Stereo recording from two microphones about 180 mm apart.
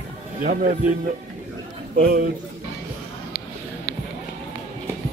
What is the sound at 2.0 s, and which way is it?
Speech, 55° right (ahead or behind).